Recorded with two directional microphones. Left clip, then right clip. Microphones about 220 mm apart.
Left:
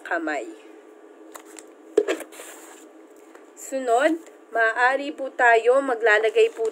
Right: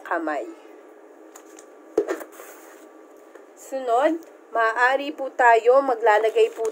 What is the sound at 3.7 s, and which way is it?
Speech, 25° left (ahead or behind).